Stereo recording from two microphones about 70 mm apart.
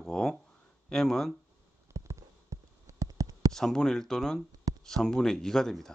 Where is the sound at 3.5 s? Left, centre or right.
Centre.